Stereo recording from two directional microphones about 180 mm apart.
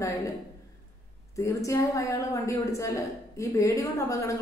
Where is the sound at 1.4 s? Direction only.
15° left (ahead or behind).